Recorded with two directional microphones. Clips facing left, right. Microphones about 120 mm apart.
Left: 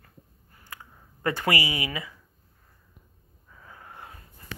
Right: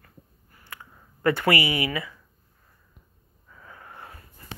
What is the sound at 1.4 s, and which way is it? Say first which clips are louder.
Speech: right 4 dB; 20° left (ahead or behind).